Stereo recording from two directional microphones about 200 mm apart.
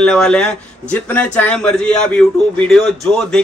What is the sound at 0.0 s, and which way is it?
A man's voice, 5° left (ahead or behind).